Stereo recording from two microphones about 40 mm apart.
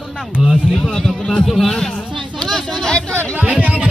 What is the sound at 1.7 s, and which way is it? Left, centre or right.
Speech, centre.